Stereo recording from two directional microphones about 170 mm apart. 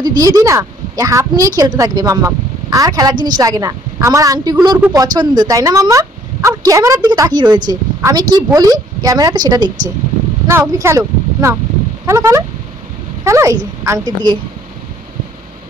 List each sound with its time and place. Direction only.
0.0 s a woman's voice: 20° right (ahead or behind)